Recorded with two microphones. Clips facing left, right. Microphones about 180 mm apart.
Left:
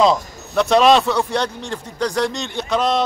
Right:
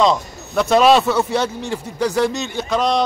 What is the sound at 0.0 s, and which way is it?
A man's voice, centre (ahead or behind).